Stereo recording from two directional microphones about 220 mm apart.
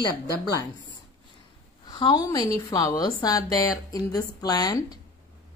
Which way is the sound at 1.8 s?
20° left (ahead or behind).